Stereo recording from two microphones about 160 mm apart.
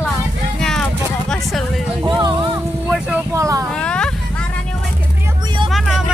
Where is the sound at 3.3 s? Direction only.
20° right (ahead or behind).